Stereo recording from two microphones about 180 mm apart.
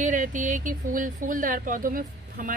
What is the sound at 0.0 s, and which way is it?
A woman's voice, 45° right (ahead or behind).